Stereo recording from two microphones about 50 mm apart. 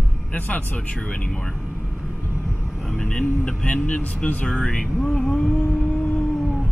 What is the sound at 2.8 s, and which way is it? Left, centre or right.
Speech, centre.